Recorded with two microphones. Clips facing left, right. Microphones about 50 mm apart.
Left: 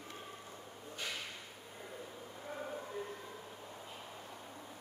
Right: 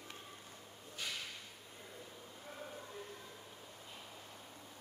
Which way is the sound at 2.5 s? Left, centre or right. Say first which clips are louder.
Left 7 dB; left.